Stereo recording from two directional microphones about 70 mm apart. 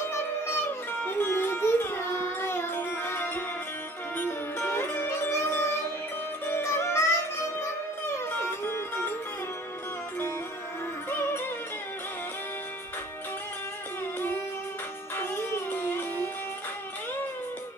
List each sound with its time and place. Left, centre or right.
1.0 s music: left
8.6 s music: left
11.1 s music: left
15.1 s music: left